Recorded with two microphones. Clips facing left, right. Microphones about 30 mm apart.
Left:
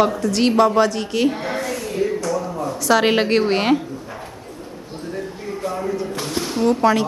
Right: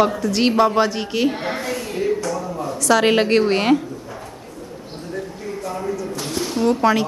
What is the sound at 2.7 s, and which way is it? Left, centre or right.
A woman's voice, centre.